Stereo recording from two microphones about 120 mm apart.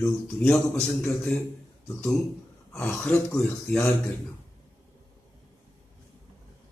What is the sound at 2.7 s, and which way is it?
A man's voice, 5° left (ahead or behind).